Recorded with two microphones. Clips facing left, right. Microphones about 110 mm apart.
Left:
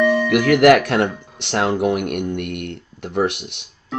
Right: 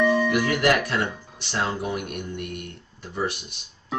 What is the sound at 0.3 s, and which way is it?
Speech, 65° left (ahead or behind).